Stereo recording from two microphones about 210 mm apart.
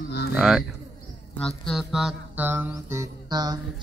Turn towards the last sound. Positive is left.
turn(degrees=-20)  # may be behind; listen again after turning